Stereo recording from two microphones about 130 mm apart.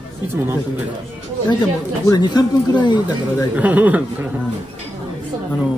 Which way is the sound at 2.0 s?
30° left (ahead or behind).